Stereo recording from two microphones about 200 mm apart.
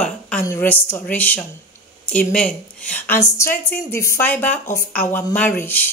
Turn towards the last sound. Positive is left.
turn(degrees=10)  # may be behind; listen again after turning